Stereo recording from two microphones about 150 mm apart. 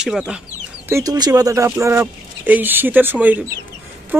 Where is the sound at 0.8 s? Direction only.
20° right (ahead or behind).